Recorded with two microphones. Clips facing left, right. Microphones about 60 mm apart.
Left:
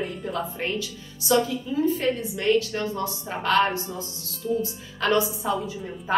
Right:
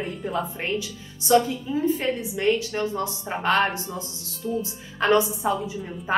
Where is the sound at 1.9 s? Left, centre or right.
Right.